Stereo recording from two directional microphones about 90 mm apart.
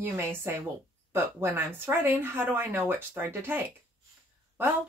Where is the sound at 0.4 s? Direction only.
25° right (ahead or behind).